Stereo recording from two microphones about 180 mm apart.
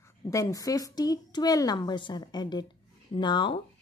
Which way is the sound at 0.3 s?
20° left (ahead or behind).